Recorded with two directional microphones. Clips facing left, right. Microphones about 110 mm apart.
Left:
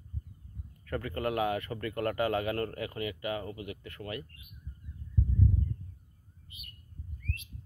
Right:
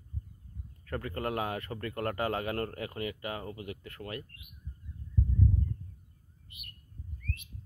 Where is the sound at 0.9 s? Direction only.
Centre (ahead or behind).